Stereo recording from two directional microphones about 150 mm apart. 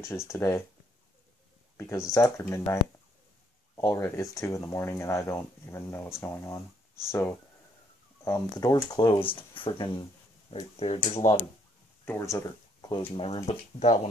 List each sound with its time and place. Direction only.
0.0 s speech: 20° left (ahead or behind)
1.8 s speech: 15° left (ahead or behind); by 11.3 s 40° left (ahead or behind)
12.0 s speech: 15° left (ahead or behind)
13.1 s speech: 40° left (ahead or behind)